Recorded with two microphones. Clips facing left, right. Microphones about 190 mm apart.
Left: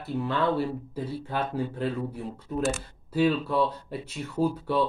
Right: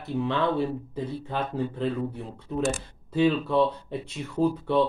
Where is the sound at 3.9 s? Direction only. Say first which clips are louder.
Right 1 dB; 5° left (ahead or behind).